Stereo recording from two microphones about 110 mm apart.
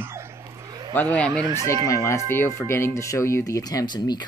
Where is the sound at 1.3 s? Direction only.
35° right (ahead or behind).